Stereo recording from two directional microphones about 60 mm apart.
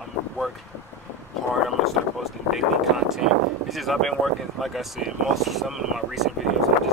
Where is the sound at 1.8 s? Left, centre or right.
Centre.